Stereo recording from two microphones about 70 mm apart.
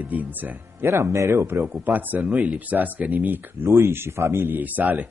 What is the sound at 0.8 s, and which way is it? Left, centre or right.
Speech, right.